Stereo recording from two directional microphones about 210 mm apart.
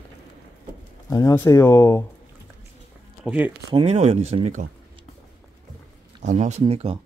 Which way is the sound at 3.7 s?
30° right (ahead or behind).